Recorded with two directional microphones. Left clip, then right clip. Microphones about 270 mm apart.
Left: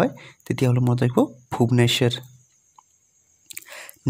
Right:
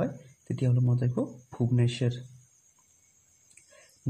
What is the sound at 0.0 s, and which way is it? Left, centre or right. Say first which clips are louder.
Speech: left 10 dB; left.